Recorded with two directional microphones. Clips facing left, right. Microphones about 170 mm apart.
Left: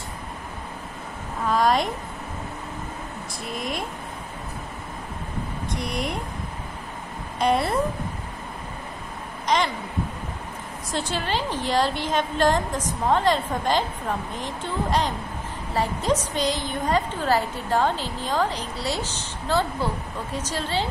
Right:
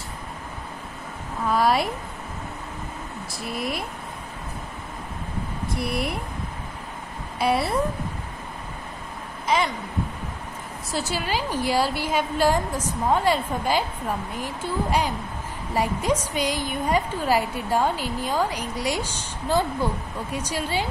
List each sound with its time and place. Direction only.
1.5 s a woman's voice: 5° right (ahead or behind)
3.4 s speech: 5° right (ahead or behind)
5.8 s speech: 5° right (ahead or behind)
7.3 s a woman's voice: 5° right (ahead or behind)
9.5 s a sound: 5° right (ahead or behind)
10.9 s a woman's voice: 5° right (ahead or behind)